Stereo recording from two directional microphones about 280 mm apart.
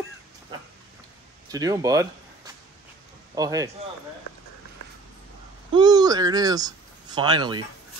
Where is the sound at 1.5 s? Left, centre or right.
Centre.